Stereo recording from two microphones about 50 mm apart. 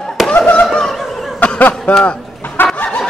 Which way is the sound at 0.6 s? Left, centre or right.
Centre.